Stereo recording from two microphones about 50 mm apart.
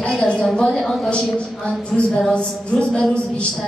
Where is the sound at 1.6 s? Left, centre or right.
Centre.